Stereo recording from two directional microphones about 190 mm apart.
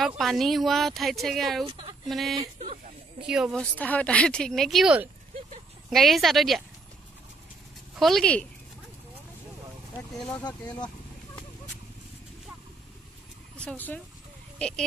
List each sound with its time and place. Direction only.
0.2 s speech: centre (ahead or behind)
1.7 s a sound: 30° right (ahead or behind)
2.0 s speech: centre (ahead or behind)
3.7 s speech: 5° left (ahead or behind)
7.9 s speech: centre (ahead or behind)
10.1 s speech: 5° left (ahead or behind)
13.6 s speech: 10° left (ahead or behind)